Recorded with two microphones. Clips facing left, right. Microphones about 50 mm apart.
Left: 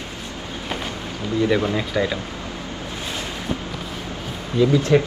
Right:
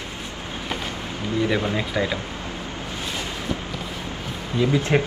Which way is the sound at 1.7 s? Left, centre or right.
Right.